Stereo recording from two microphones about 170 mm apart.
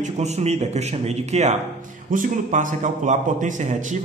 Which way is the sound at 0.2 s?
40° right (ahead or behind).